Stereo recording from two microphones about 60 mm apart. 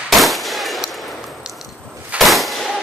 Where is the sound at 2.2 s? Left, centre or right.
Centre.